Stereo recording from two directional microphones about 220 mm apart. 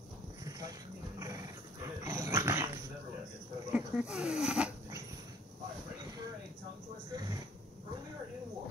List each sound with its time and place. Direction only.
0.5 s a sound: 15° right (ahead or behind)
1.2 s dog: 15° right (ahead or behind)
3.7 s dog: 5° right (ahead or behind)